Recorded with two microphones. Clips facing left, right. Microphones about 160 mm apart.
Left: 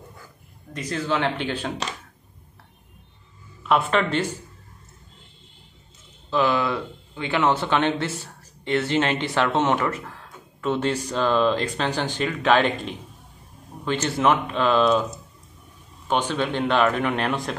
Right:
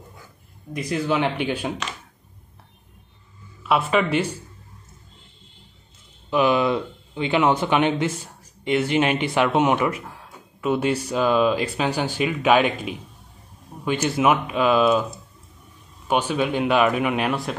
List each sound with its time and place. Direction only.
0.7 s speech: 15° right (ahead or behind)
3.6 s speech: 5° right (ahead or behind)
6.3 s speech: 15° right (ahead or behind)
16.1 s speech: 10° right (ahead or behind)